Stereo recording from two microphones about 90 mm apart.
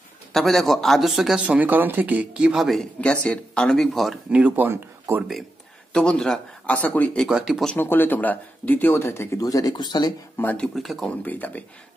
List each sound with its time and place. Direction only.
0.3 s speech: centre (ahead or behind)
1.4 s speech: 15° right (ahead or behind)
3.0 s speech: 10° left (ahead or behind)
4.3 s speech: 15° right (ahead or behind)
5.9 s speech: 10° left (ahead or behind)
7.2 s speech: 10° right (ahead or behind)
7.7 s speech: 25° left (ahead or behind)
9.4 s speech: 40° left (ahead or behind)
9.8 s speech: 55° left (ahead or behind)
10.3 s speech: 20° left (ahead or behind)
10.7 s speech: centre (ahead or behind)
11.1 s speech: 20° left (ahead or behind)